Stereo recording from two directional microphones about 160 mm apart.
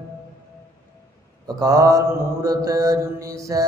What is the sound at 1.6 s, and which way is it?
Mantra, 20° right (ahead or behind).